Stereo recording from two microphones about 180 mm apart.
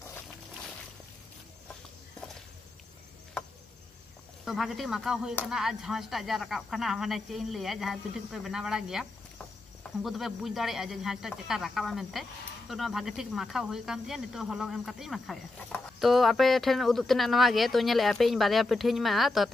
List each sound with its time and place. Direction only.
4.5 s speech: centre (ahead or behind)
10.0 s speech: centre (ahead or behind)